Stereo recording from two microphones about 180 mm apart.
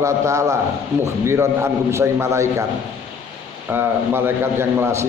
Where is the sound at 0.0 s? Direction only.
15° right (ahead or behind).